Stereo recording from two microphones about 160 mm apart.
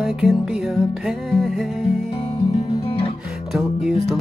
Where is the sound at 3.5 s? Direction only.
Centre (ahead or behind).